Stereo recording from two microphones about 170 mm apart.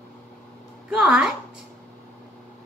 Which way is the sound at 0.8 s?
5° right (ahead or behind).